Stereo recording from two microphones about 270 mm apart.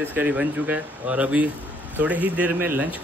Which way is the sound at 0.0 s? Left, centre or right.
Centre.